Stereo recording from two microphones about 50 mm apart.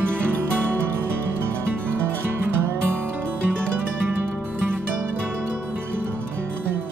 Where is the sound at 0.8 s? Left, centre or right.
Right.